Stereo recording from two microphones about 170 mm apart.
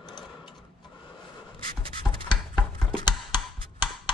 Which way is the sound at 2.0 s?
5° right (ahead or behind).